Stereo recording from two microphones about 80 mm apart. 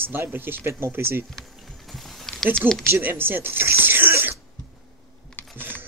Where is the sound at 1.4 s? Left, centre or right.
Centre.